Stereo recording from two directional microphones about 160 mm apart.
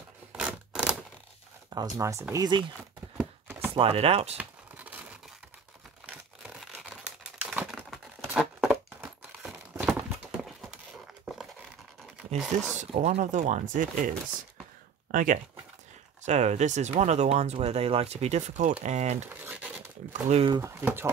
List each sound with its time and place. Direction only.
0.3 s a sound: 5° right (ahead or behind)
1.7 s speech: 20° right (ahead or behind)
3.2 s chopping: 15° right (ahead or behind)
3.7 s speech: 35° right (ahead or behind)
4.4 s crumpling: 10° right (ahead or behind)
6.0 s crumpling: centre (ahead or behind)
7.4 s a sound: 5° right (ahead or behind)
12.5 s speech: 45° right (ahead or behind)
16.3 s speech: 45° right (ahead or behind)
19.2 s a sound: 10° right (ahead or behind)
20.1 s speech: 40° right (ahead or behind)
20.5 s speech: 20° right (ahead or behind)